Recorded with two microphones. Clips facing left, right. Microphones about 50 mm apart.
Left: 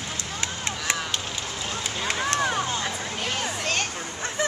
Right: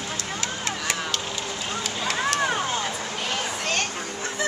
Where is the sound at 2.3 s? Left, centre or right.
Centre.